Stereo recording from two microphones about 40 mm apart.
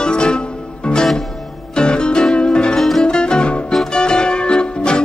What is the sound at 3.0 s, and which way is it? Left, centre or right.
Music, centre.